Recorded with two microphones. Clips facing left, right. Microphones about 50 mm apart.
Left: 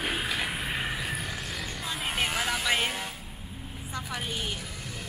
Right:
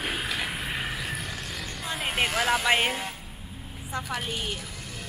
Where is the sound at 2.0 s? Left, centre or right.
Centre.